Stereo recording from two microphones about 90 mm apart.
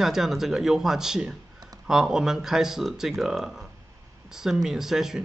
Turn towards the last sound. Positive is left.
turn(degrees=-5)  # may be behind; listen again after turning